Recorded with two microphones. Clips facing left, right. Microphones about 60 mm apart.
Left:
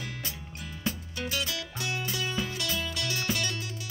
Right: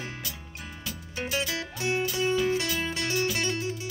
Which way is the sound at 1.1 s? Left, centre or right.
Right.